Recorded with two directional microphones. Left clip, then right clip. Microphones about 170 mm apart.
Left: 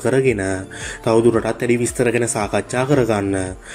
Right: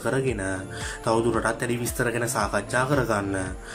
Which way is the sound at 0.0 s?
20° left (ahead or behind).